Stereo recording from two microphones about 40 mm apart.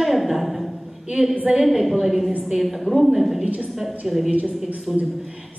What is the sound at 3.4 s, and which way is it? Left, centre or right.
Speech, right.